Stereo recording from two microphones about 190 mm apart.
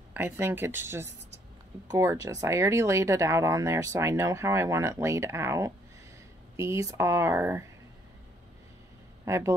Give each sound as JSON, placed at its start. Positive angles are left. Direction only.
{"t": 0.1, "sound": "speech", "side_deg": -10}
{"t": 9.2, "sound": "speech", "side_deg": -15}